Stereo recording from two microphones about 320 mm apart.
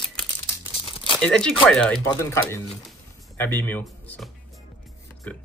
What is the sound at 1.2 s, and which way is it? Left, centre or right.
Speech, centre.